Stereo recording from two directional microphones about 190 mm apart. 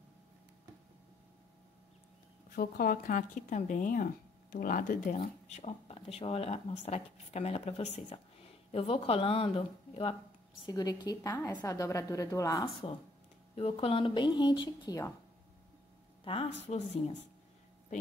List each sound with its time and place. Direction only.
2.5 s speech: 50° left (ahead or behind); by 10.1 s 30° left (ahead or behind)
10.6 s a woman's voice: 20° left (ahead or behind)
13.6 s a woman's voice: 30° left (ahead or behind)
16.6 s speech: 35° left (ahead or behind)